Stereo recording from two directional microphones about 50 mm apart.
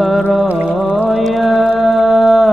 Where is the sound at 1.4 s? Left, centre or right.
Centre.